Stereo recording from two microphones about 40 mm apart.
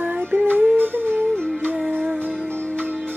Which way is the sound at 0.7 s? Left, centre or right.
Right.